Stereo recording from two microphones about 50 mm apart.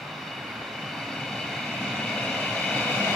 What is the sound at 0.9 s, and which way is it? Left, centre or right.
Vehicle, centre.